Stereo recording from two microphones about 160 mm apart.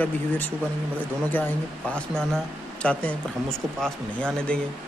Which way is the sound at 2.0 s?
5° left (ahead or behind).